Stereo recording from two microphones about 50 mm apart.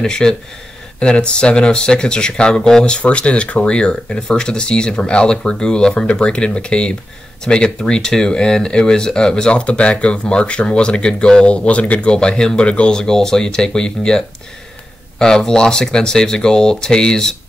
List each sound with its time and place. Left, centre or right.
0.0 s speech: centre
2.8 s speech: left